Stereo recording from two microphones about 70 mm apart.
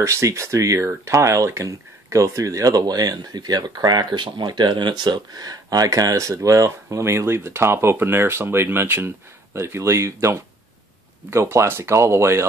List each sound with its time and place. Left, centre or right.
0.0 s speech: right